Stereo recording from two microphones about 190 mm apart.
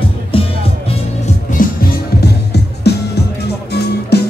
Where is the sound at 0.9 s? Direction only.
40° left (ahead or behind).